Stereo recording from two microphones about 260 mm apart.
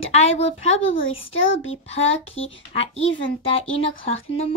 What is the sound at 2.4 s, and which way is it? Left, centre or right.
A woman's voice, left.